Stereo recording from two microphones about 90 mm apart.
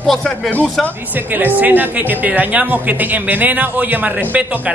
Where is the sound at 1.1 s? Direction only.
20° right (ahead or behind).